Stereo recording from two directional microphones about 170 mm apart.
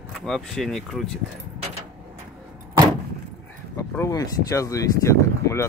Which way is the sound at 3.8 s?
20° left (ahead or behind).